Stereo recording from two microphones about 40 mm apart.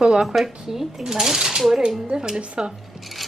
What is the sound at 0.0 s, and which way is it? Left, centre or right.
A woman's voice, centre.